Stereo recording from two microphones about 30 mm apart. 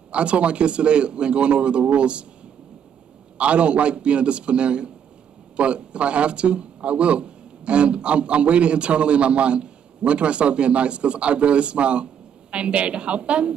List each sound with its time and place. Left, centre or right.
0.1 s a man's voice: right
3.3 s a man's voice: right